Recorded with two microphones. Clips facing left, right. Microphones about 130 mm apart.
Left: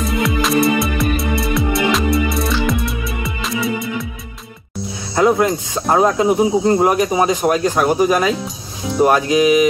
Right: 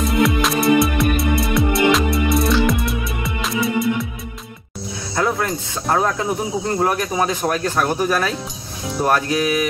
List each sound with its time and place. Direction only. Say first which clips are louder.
0.2 s music: left 2 dB; centre (ahead or behind)
5.1 s music: left 7 dB; 20° left (ahead or behind)
5.9 s speech: left 5 dB; 20° left (ahead or behind)